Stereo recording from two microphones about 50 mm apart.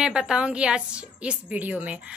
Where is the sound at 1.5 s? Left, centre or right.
Right.